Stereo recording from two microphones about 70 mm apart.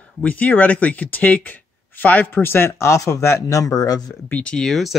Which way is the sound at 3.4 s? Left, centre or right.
Left.